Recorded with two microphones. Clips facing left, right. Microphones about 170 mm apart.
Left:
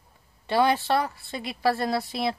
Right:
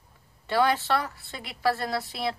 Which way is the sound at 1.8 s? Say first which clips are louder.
Left 3 dB; 15° left (ahead or behind).